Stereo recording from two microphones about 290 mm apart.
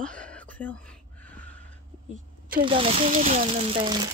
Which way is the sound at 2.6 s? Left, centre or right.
Centre.